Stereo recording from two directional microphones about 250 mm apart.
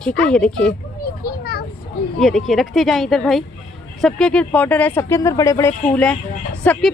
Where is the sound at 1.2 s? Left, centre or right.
Left.